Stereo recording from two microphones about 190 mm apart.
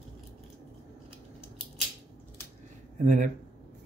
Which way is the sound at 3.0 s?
40° right (ahead or behind).